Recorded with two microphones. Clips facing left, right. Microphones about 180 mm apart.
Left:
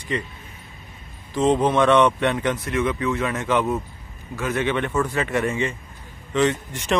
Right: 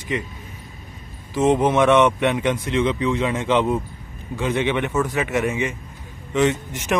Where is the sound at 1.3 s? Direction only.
10° right (ahead or behind).